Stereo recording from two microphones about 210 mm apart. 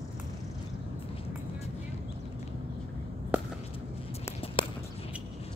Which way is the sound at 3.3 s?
5° right (ahead or behind).